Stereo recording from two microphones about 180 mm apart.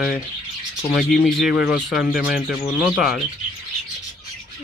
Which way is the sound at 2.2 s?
5° right (ahead or behind).